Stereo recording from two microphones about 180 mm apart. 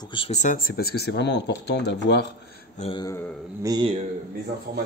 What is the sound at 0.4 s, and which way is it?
Speech, 50° left (ahead or behind).